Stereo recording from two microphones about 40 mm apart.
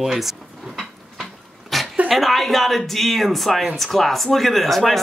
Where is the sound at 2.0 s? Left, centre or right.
Centre.